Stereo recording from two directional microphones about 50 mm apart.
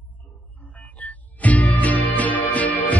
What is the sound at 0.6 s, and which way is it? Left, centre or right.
Music, left.